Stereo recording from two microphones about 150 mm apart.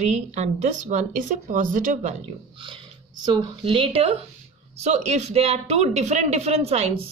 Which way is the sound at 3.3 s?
35° right (ahead or behind).